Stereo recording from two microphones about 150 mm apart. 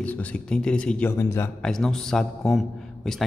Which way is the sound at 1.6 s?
5° left (ahead or behind).